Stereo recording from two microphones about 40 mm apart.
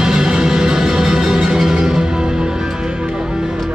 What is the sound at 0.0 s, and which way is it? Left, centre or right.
Music, centre.